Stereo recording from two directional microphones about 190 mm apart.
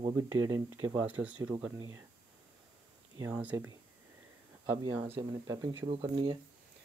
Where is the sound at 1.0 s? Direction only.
10° right (ahead or behind).